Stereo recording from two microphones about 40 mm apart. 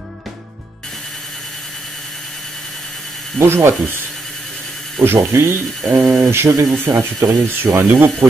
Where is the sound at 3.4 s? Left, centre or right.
Right.